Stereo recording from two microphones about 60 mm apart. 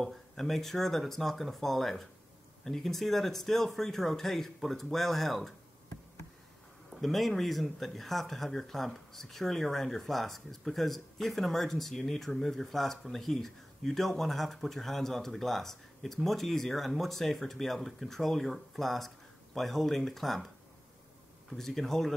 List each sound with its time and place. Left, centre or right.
0.0 s speech: centre
6.9 s speech: centre
21.5 s speech: centre